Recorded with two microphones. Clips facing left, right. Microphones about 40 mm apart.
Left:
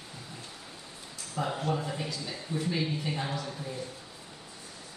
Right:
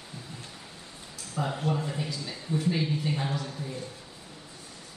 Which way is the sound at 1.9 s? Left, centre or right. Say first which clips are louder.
Right 1 dB; centre.